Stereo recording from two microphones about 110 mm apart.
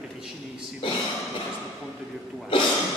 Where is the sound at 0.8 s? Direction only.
50° left (ahead or behind).